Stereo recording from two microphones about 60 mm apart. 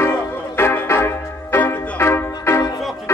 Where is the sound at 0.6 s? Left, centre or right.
Left.